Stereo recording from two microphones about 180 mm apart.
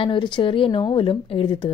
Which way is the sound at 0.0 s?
25° left (ahead or behind).